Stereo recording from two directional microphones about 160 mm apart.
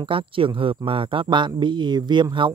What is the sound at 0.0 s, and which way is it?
Speech, 35° right (ahead or behind).